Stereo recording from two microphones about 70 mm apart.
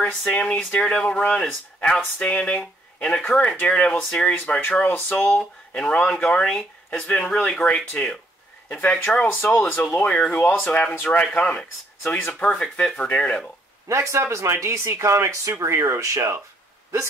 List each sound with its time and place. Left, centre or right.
0.3 s speech: centre
4.7 s speech: left
8.6 s speech: left
12.5 s speech: centre
13.8 s speech: right